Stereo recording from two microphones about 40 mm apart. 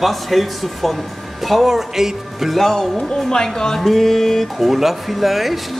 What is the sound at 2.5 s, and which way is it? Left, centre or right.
Music, centre.